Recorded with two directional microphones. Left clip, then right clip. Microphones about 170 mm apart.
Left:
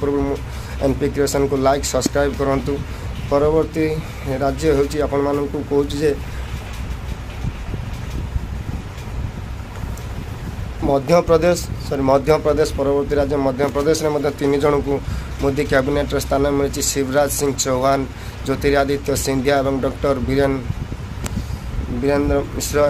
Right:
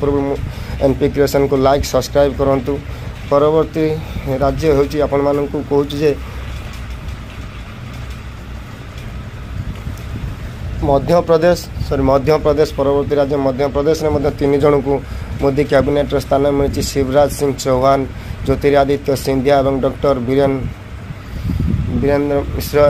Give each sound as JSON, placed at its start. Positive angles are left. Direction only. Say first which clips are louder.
{"t": 0.7, "sound": "speech", "louder": "right 5 dB", "side_deg": -20}
{"t": 10.9, "sound": "speech", "louder": "right 2 dB", "side_deg": -15}
{"t": 22.0, "sound": "speech", "louder": "right 3 dB", "side_deg": -15}